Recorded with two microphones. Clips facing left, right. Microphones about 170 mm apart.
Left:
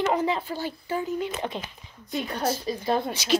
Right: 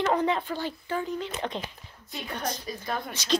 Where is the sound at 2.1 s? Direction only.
35° left (ahead or behind).